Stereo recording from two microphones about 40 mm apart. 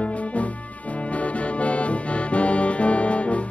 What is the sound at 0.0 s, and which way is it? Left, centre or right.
Music, left.